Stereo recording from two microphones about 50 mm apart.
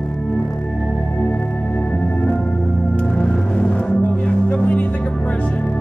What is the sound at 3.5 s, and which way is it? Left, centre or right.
Music, left.